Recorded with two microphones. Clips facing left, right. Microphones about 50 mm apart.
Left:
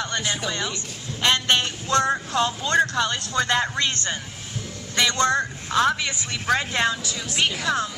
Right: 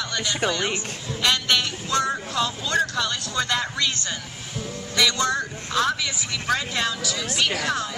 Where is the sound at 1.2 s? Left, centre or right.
Left.